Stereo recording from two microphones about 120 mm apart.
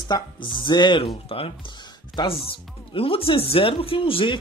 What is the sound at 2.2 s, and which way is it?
Speech, 40° left (ahead or behind).